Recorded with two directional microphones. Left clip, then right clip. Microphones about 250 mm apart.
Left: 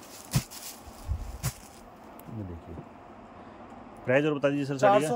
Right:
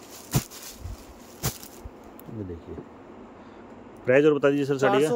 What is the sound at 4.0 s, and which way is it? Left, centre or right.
A man's voice, centre.